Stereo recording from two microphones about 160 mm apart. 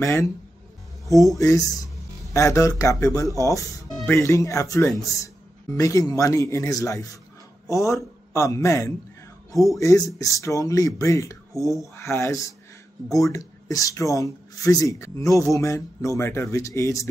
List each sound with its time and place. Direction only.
0.0 s speech: 20° left (ahead or behind)
1.4 s speech: 20° left (ahead or behind)